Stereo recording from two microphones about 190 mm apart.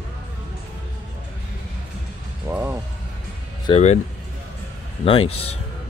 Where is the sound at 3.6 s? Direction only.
35° left (ahead or behind).